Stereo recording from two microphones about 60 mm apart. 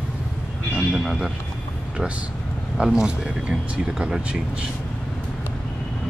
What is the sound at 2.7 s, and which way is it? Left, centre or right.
Speech, centre.